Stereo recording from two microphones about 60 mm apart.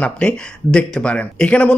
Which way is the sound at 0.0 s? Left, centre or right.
Centre.